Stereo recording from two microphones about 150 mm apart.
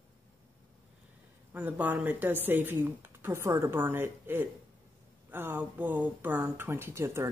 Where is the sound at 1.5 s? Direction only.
10° right (ahead or behind).